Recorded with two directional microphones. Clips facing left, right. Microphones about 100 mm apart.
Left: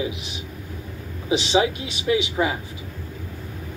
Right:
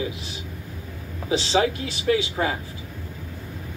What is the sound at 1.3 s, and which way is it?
Speech, 20° left (ahead or behind).